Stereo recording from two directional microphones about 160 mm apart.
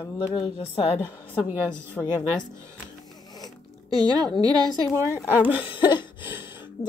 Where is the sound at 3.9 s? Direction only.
25° right (ahead or behind).